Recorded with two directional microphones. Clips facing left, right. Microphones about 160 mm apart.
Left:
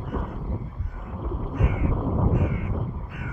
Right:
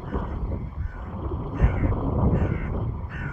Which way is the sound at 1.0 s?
Centre (ahead or behind).